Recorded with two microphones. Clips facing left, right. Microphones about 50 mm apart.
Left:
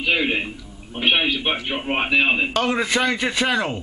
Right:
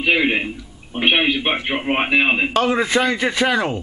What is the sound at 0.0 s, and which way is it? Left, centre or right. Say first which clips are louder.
A man's voice: right 3 dB; right.